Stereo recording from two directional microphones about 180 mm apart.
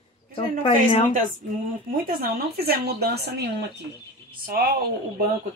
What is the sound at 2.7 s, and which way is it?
Speech, 60° right (ahead or behind).